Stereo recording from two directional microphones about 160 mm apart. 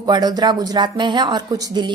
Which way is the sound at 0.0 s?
25° right (ahead or behind).